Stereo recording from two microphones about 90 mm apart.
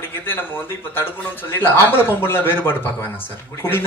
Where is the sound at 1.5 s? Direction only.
20° left (ahead or behind).